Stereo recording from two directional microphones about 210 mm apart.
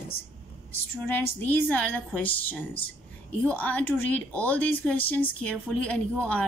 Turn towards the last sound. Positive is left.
turn(degrees=5)  # may be behind; listen again after turning